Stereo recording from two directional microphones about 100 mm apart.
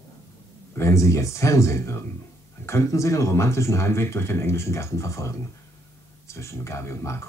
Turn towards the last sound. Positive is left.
turn(degrees=30)  # may be behind; listen again after turning